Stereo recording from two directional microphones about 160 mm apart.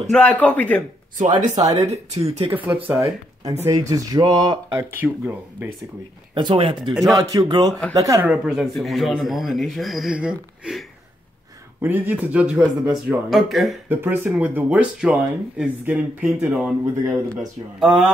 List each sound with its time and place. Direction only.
0.1 s a man's voice: 5° left (ahead or behind)
1.4 s speech: 45° right (ahead or behind)
2.6 s speech: 15° right (ahead or behind)
4.7 s speech: 10° right (ahead or behind)
6.3 s speech: 30° right (ahead or behind)
8.3 s a man's voice: 5° right (ahead or behind)
11.8 s speech: 10° right (ahead or behind)
13.8 s speech: 15° right (ahead or behind)
17.7 s a man's voice: centre (ahead or behind)